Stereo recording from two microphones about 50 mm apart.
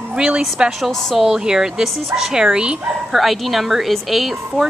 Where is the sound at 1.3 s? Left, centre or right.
Centre.